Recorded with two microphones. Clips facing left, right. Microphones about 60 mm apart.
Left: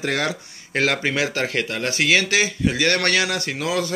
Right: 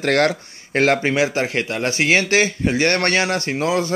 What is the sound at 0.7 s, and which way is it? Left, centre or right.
Speech, right.